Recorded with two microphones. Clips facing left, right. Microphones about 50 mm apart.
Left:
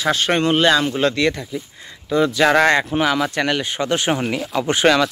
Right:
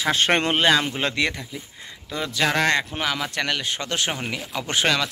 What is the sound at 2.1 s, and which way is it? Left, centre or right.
Speech, centre.